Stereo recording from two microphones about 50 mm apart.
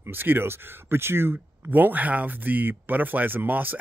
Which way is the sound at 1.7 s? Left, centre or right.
Right.